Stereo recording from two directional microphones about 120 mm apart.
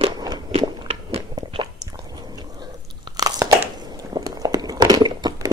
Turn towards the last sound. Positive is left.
turn(degrees=-35)  # may be behind; listen again after turning